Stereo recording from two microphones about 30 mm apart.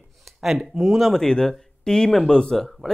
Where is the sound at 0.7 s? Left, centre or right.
Centre.